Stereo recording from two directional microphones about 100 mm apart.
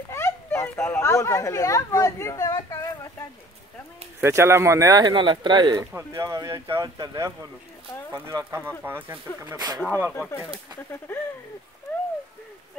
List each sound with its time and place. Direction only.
0.1 s a sound: 25° left (ahead or behind)
4.2 s speech: 25° right (ahead or behind)
5.1 s speech: 55° right (ahead or behind)
5.9 s speech: 30° right (ahead or behind)
8.5 s speech: 25° right (ahead or behind)
9.4 s speech: 40° right (ahead or behind)
9.8 s speech: 20° right (ahead or behind)
10.1 s speech: 20° left (ahead or behind)